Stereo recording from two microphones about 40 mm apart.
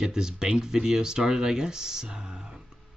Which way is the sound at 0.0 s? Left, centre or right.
Centre.